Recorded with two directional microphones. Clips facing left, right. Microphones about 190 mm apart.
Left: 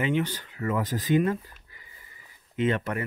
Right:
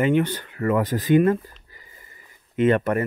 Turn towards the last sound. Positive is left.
turn(degrees=-55)  # may be behind; listen again after turning